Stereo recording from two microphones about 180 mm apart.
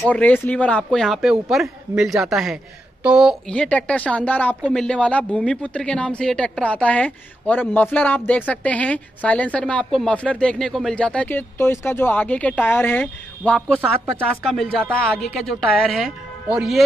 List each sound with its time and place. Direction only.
0.0 s a woman's voice: 10° left (ahead or behind)